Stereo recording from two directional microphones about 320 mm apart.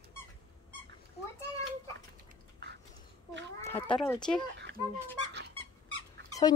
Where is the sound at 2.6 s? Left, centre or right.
Right.